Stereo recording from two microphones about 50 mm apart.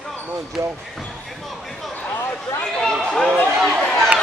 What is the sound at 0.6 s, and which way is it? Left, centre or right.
Speech, right.